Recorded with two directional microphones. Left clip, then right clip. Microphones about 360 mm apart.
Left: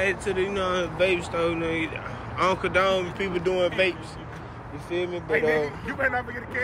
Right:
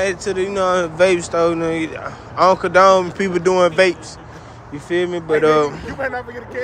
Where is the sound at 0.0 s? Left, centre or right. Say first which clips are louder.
Right 5 dB; centre.